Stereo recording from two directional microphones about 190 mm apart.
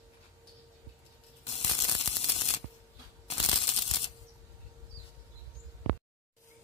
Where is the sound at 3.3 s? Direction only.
30° left (ahead or behind).